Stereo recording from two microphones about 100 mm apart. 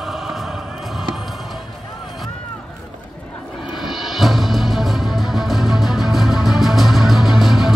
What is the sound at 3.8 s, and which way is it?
Music, centre (ahead or behind).